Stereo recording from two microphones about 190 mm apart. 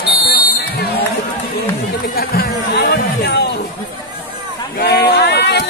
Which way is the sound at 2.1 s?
50° left (ahead or behind).